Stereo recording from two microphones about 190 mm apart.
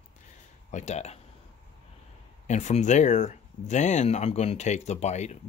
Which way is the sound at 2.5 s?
40° left (ahead or behind).